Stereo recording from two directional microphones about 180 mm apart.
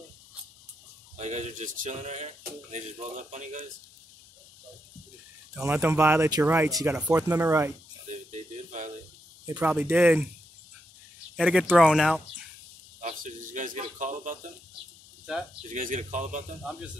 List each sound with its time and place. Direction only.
1.1 s speech: 40° right (ahead or behind)
5.5 s speech: 5° right (ahead or behind)
5.8 s speech: 15° right (ahead or behind)
8.1 s a sound: 40° right (ahead or behind)
9.6 s speech: 10° right (ahead or behind)
11.3 s speech: 5° right (ahead or behind)
13.0 s speech: 45° right (ahead or behind)
15.7 s speech: 45° right (ahead or behind)